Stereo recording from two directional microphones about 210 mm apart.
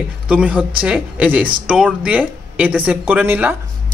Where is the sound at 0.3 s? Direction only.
5° right (ahead or behind).